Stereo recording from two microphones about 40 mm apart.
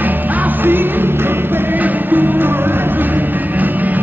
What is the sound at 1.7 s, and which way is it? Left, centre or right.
Music, right.